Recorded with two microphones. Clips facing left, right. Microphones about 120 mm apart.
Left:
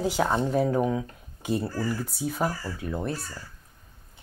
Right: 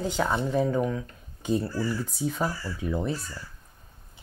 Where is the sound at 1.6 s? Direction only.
45° left (ahead or behind).